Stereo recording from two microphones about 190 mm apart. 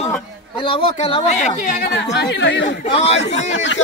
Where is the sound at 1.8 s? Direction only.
65° left (ahead or behind).